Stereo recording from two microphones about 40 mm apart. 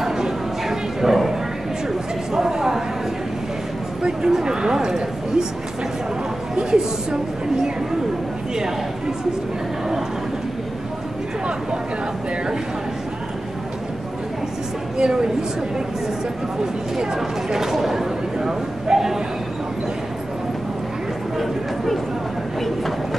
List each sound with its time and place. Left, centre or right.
0.0 s bow-wow: centre
2.3 s a sound: centre
4.0 s speech: centre
6.5 s speech: centre
15.0 s speech: centre
16.9 s speech: centre
21.4 s a sound: centre